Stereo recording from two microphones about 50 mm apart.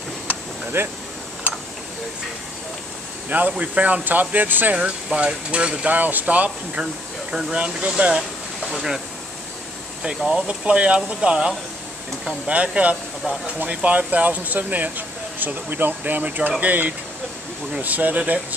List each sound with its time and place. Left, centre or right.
0.3 s a sound: right
1.5 s a sound: right
3.3 s speech: right
4.7 s speech: right
5.9 s speech: right
6.8 s speech: centre
10.3 s speech: right